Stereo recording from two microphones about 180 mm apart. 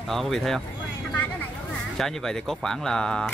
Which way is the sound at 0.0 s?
Centre (ahead or behind).